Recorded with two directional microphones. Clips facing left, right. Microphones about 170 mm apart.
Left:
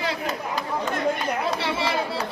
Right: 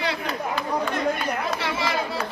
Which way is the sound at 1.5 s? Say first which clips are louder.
Left 1 dB; 30° left (ahead or behind).